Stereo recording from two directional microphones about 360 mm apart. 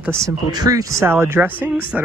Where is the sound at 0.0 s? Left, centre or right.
Centre.